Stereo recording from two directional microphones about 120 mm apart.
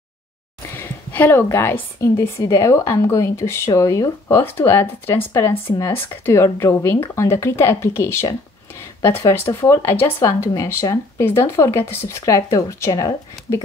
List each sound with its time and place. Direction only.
0.7 s a woman's voice: 15° left (ahead or behind)